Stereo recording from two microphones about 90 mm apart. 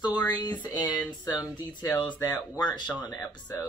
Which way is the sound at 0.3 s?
50° left (ahead or behind).